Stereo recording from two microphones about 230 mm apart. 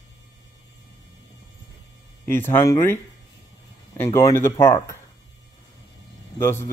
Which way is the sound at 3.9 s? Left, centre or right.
Centre.